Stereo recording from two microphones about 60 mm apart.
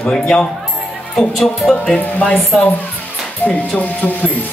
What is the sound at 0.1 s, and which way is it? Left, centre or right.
Speech, centre.